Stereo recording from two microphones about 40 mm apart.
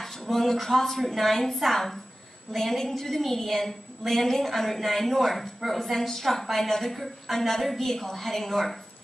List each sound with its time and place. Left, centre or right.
0.0 s a woman's voice: centre